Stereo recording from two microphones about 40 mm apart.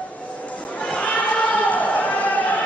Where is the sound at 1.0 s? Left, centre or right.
Left.